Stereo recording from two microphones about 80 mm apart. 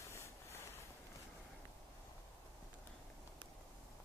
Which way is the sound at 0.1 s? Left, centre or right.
Left.